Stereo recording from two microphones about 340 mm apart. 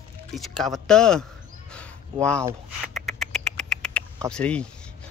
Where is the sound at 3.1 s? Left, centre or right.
Centre.